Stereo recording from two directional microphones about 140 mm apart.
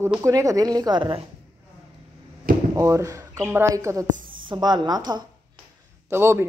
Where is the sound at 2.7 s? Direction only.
25° right (ahead or behind).